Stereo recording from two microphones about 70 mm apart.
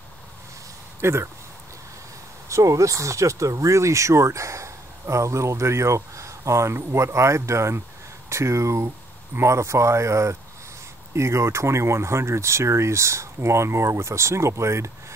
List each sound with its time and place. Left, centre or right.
1.0 s speech: right
2.5 s speech: right